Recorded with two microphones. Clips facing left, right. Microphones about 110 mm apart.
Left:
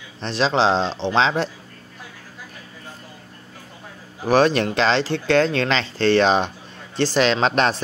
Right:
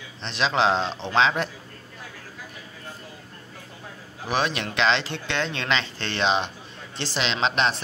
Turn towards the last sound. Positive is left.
turn(degrees=45)  # may be behind; listen again after turning